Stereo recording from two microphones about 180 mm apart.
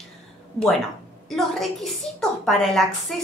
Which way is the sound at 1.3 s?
Centre (ahead or behind).